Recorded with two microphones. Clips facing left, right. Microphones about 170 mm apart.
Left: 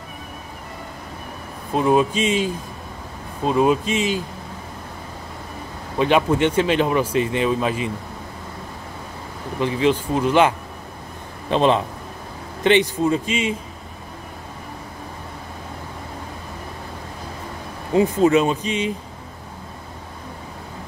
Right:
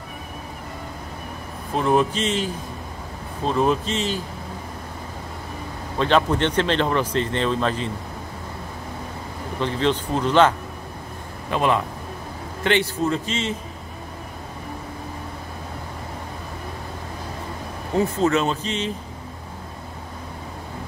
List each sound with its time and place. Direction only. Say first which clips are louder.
1.8 s speech: left 2 dB; 15° left (ahead or behind)
5.9 s speech: left 2 dB; 10° left (ahead or behind)
9.6 s speech: left 3 dB; 10° left (ahead or behind)
11.5 s a man's voice: left 4 dB; 25° left (ahead or behind)
17.9 s speech: left 4 dB; 15° left (ahead or behind)